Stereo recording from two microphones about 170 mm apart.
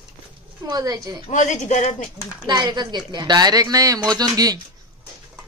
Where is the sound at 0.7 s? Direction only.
20° right (ahead or behind).